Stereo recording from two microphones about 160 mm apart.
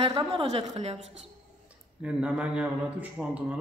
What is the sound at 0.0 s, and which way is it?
Speech, 35° right (ahead or behind).